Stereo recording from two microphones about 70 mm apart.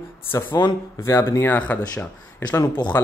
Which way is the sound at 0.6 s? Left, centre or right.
Left.